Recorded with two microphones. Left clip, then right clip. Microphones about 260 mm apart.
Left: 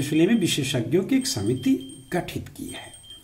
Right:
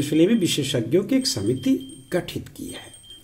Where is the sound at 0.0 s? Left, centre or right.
Centre.